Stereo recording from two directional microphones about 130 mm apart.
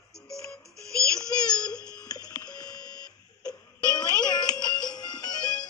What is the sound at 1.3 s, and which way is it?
Crying, 30° left (ahead or behind).